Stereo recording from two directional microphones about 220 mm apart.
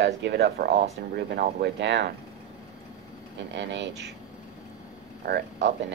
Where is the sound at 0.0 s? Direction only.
50° right (ahead or behind).